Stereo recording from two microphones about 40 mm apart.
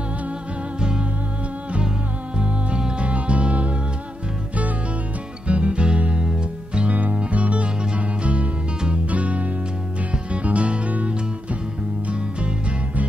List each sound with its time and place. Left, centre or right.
0.7 s music: right
2.3 s music: right
5.5 s music: right
6.8 s music: right